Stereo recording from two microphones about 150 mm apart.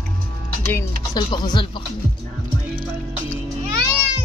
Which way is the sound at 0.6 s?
20° left (ahead or behind).